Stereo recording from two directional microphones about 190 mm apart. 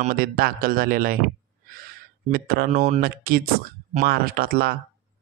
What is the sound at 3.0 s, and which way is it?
Speech, 50° right (ahead or behind).